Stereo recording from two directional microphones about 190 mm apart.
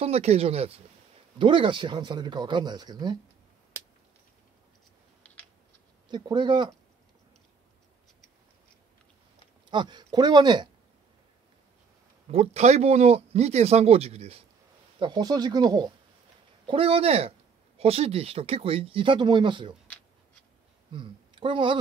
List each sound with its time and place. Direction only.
0.0 s speech: 35° right (ahead or behind)
6.0 s speech: 25° right (ahead or behind)
9.7 s speech: 25° right (ahead or behind)
12.3 s speech: 35° right (ahead or behind)
20.9 s speech: 25° right (ahead or behind)